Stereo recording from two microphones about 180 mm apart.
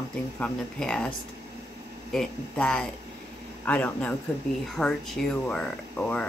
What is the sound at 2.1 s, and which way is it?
Speech, 5° left (ahead or behind).